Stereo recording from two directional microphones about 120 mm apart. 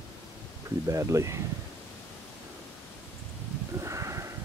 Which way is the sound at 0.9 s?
25° right (ahead or behind).